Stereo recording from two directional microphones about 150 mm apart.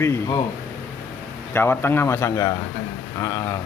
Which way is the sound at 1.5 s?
15° left (ahead or behind).